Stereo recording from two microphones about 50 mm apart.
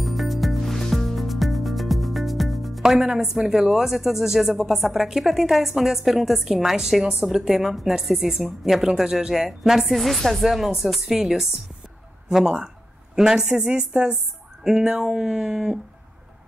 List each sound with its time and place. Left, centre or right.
0.0 s music: centre
2.8 s a woman's voice: centre